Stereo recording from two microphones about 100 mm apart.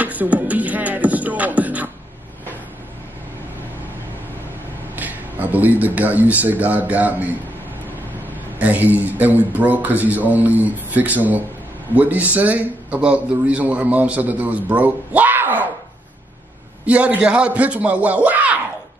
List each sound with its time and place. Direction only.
0.0 s beatboxing: 15° right (ahead or behind)
4.9 s speech: 15° right (ahead or behind)
8.5 s a man's voice: 15° right (ahead or behind)
16.8 s a man's voice: 10° right (ahead or behind)